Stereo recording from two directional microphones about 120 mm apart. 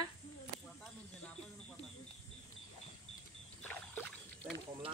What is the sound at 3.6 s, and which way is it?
Rowboat, 10° left (ahead or behind).